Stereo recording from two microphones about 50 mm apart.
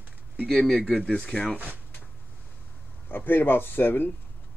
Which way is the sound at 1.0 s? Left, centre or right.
Centre.